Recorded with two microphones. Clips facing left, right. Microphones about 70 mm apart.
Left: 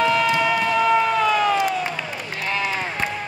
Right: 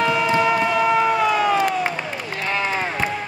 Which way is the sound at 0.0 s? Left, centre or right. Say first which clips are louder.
Left 1 dB; centre.